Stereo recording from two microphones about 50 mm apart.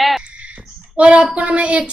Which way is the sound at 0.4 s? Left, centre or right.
Right.